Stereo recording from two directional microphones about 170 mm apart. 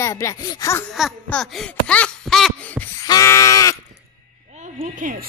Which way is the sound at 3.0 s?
20° left (ahead or behind).